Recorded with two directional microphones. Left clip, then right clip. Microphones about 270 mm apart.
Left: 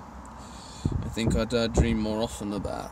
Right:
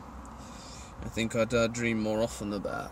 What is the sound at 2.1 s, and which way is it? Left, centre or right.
Speech, centre.